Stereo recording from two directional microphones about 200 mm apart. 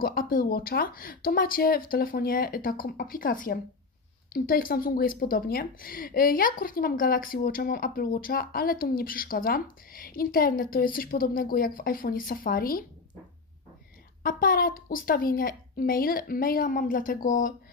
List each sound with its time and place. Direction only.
0.0 s speech: 45° left (ahead or behind)
14.2 s speech: 45° left (ahead or behind)